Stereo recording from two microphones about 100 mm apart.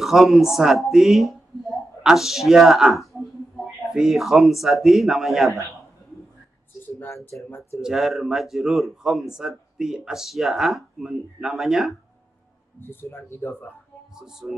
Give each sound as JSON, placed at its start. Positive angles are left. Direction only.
{"t": 0.0, "sound": "speech", "side_deg": 0}
{"t": 7.4, "sound": "speech", "side_deg": 25}
{"t": 7.8, "sound": "speech", "side_deg": -5}
{"t": 12.8, "sound": "speech", "side_deg": 25}
{"t": 14.1, "sound": "speech", "side_deg": -5}